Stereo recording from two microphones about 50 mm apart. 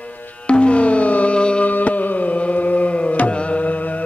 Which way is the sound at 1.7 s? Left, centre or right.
Left.